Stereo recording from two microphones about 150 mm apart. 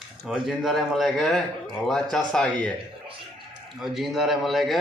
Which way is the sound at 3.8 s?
Centre (ahead or behind).